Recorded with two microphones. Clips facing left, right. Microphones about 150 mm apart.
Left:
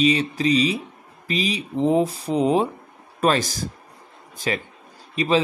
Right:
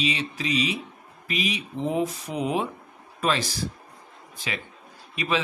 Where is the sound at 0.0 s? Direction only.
40° left (ahead or behind).